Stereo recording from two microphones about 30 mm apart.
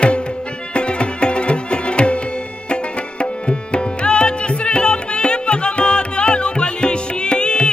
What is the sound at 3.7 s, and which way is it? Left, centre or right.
Music, left.